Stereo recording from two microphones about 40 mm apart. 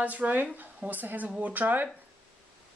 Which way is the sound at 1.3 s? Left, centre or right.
Right.